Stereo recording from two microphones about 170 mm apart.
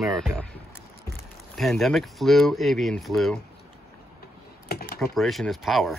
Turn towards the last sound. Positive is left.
turn(degrees=0)  # may be behind; listen again after turning